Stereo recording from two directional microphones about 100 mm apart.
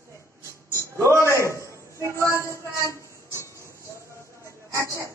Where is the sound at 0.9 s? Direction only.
30° right (ahead or behind).